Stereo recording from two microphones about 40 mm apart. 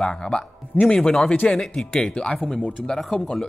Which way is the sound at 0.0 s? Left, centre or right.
Left.